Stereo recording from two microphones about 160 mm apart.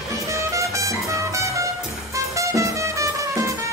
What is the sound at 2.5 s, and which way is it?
Music, 20° right (ahead or behind).